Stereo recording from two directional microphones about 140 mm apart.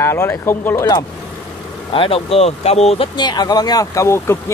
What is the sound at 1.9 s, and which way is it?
Speech, 40° left (ahead or behind).